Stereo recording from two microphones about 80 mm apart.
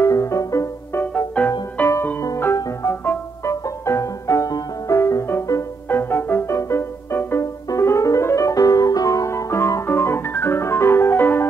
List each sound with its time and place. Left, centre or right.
0.0 s music: left
1.4 s music: centre
3.4 s music: left
7.7 s piano: left